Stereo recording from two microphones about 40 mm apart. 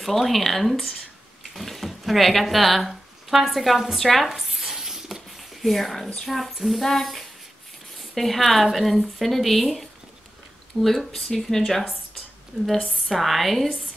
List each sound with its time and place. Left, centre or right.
0.0 s speech: centre
4.3 s a sound: centre
6.2 s speech: centre
12.5 s a woman's voice: left
13.1 s speech: centre